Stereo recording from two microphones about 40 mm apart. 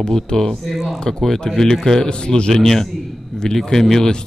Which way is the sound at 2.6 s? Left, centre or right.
Centre.